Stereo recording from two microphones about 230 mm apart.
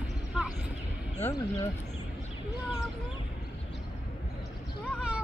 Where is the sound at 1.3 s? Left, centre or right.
Centre.